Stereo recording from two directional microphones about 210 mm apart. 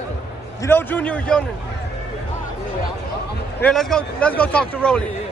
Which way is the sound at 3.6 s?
Centre (ahead or behind).